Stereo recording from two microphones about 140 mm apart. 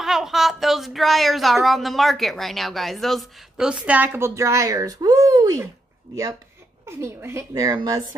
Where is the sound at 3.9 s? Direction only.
15° right (ahead or behind).